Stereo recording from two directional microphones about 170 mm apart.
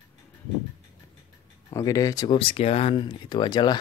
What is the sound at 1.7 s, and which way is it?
Speech, 20° left (ahead or behind).